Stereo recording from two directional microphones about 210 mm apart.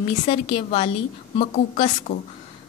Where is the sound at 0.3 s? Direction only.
25° left (ahead or behind).